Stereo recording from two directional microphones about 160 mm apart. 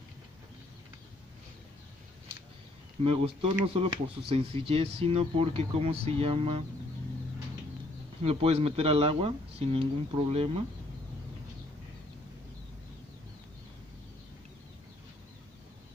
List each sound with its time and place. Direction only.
3.0 s speech: 35° right (ahead or behind)
8.2 s speech: 40° right (ahead or behind)